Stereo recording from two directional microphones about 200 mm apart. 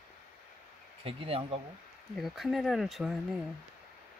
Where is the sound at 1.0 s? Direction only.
30° right (ahead or behind).